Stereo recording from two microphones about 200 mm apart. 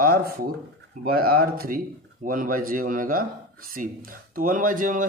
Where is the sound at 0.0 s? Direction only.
50° right (ahead or behind).